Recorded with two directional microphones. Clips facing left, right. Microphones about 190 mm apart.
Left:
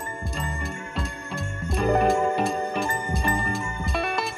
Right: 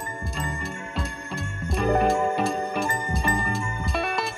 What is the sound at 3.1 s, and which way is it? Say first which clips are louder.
Music: even; centre (ahead or behind).